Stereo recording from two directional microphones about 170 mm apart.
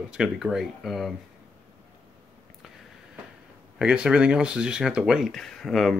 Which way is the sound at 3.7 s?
5° right (ahead or behind).